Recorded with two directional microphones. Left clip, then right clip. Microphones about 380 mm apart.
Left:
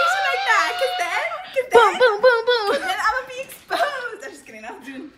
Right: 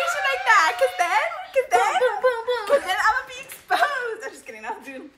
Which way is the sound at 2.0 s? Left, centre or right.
Centre.